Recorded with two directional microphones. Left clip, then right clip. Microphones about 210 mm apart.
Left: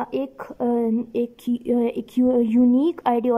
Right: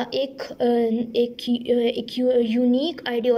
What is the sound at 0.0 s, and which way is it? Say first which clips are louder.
A woman's voice: right 2 dB; 10° left (ahead or behind).